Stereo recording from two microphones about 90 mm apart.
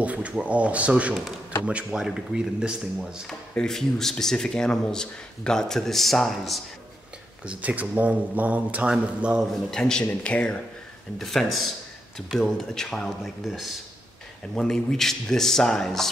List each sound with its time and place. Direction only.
0.0 s speech: 15° right (ahead or behind)
3.3 s speech: 5° left (ahead or behind)
7.4 s speech: 15° right (ahead or behind)
9.5 s a man's voice: 5° left (ahead or behind)